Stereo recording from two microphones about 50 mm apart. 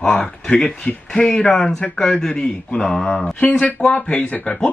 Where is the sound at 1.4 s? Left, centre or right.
Centre.